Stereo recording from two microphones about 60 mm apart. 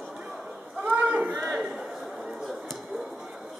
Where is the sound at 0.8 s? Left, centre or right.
Right.